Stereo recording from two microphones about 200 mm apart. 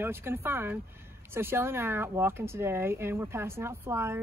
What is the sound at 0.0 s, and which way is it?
Speech, 10° right (ahead or behind).